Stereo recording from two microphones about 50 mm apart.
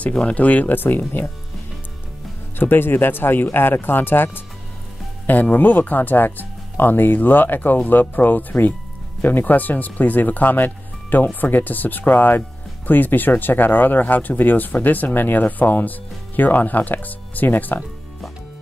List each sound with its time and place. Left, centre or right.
0.1 s speech: left
2.6 s speech: left